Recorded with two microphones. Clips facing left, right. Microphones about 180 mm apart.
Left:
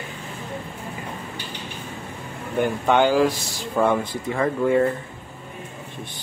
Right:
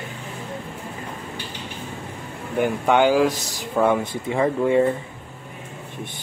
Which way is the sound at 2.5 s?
5° right (ahead or behind).